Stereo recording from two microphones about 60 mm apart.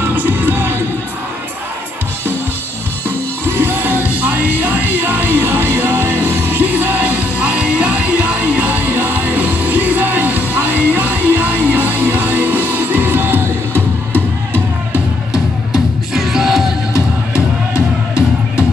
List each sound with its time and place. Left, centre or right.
0.0 s music: right
3.4 s music: right
15.3 s music: centre
17.7 s music: centre